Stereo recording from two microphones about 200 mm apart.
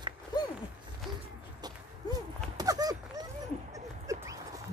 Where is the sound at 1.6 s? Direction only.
20° right (ahead or behind).